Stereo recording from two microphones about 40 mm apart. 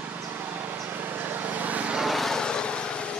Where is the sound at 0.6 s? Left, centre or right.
Right.